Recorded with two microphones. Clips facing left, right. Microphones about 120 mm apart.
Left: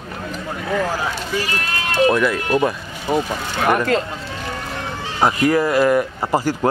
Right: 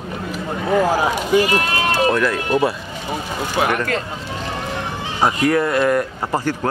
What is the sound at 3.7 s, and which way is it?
Speech, 25° left (ahead or behind).